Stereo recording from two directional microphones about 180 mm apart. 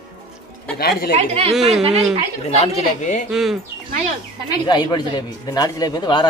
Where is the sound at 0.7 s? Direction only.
60° left (ahead or behind).